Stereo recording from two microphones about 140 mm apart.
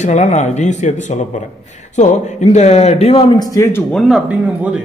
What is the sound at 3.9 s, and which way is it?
Speech, centre (ahead or behind).